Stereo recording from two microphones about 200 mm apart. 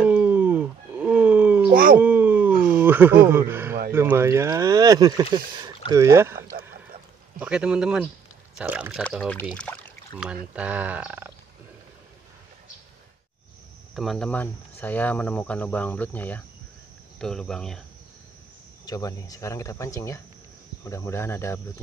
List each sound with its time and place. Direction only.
0.0 s a sound: 5° right (ahead or behind)
1.7 s speech: 45° right (ahead or behind)
2.0 s a sound: 10° right (ahead or behind)
2.5 s a sound: 45° right (ahead or behind)
2.8 s speech: 10° right (ahead or behind)
9.0 s speech: 5° left (ahead or behind)
10.2 s speech: 5° right (ahead or behind)
13.9 s speech: centre (ahead or behind)
18.9 s speech: 20° left (ahead or behind)